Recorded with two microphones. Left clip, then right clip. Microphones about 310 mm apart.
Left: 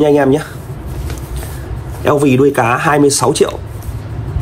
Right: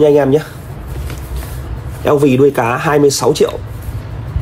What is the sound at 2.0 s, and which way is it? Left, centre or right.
A man's voice, left.